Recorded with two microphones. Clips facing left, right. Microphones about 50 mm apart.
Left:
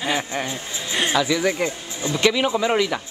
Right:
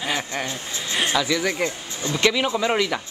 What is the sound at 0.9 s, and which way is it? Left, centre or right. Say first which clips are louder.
Speech: left 2 dB; centre.